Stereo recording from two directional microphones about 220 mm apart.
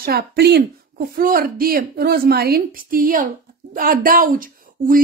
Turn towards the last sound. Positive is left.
turn(degrees=-40)  # may be behind; listen again after turning